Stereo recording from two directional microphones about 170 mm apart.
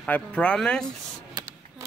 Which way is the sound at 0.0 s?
5° left (ahead or behind).